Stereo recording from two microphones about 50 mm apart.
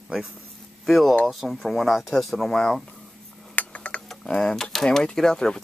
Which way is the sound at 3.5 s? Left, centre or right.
Left.